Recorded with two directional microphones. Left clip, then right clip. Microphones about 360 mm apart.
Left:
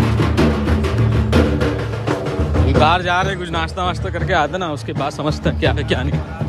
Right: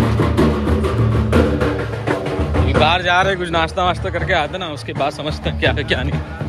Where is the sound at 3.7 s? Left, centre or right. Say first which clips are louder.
Right 3 dB; centre.